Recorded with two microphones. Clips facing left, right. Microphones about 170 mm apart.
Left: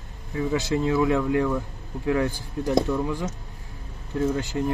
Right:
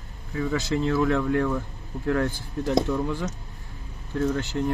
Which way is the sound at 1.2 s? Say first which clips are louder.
Left 1 dB; 5° left (ahead or behind).